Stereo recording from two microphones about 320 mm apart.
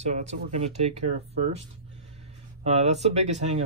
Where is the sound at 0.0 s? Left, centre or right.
Right.